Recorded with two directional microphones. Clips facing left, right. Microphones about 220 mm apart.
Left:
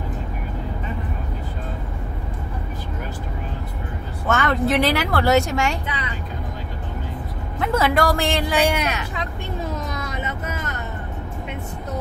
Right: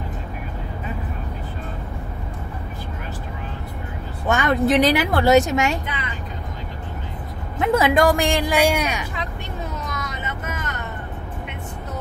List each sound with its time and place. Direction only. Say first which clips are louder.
4.3 s a woman's voice: right 2 dB; 15° right (ahead or behind)
7.5 s a woman's voice: right 2 dB; 15° right (ahead or behind)